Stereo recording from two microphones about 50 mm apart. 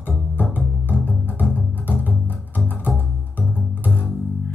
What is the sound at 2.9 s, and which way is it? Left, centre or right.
Music, centre.